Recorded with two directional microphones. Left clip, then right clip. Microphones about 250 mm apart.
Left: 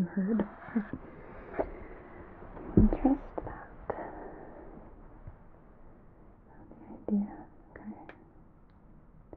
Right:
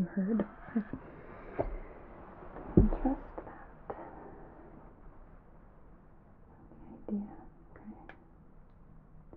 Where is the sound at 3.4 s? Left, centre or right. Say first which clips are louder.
Left 6 dB; left.